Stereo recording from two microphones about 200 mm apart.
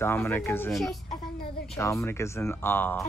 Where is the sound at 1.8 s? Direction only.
15° left (ahead or behind).